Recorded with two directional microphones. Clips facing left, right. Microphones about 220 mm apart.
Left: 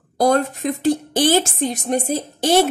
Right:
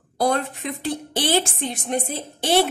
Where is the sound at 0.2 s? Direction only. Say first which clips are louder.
Left 5 dB; 40° left (ahead or behind).